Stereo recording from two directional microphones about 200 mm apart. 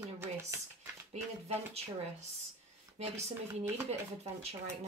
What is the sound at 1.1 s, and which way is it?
Speech, 35° right (ahead or behind).